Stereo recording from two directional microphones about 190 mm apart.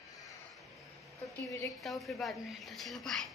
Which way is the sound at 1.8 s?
Centre (ahead or behind).